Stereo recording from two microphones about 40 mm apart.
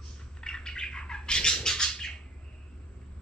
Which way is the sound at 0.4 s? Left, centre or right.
Centre.